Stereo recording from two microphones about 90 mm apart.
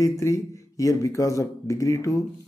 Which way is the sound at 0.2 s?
35° left (ahead or behind).